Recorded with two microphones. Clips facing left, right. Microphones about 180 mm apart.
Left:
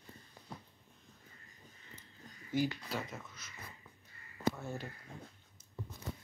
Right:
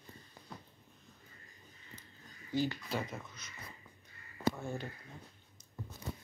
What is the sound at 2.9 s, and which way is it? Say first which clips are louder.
Speech: right 2 dB; centre (ahead or behind).